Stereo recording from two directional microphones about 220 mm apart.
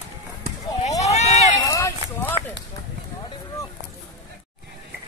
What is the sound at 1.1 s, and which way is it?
Run, 30° left (ahead or behind).